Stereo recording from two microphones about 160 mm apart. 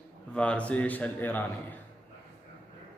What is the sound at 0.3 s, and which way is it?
A man's voice, 10° left (ahead or behind).